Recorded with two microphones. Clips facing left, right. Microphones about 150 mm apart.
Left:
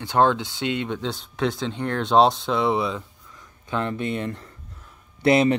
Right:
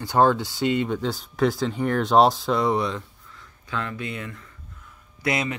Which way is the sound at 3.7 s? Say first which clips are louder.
Left 5 dB; 25° left (ahead or behind).